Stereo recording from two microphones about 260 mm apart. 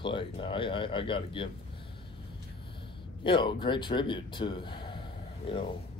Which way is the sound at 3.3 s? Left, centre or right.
Centre.